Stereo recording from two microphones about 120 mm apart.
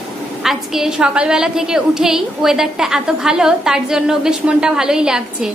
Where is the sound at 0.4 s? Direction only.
5° right (ahead or behind).